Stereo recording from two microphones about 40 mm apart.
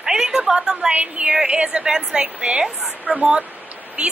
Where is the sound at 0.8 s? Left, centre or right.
Right; by 3.2 s centre.